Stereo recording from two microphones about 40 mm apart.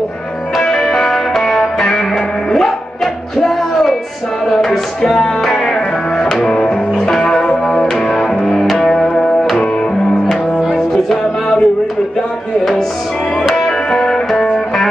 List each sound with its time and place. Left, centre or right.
0.7 s music: centre
11.1 s music: centre
13.6 s music: centre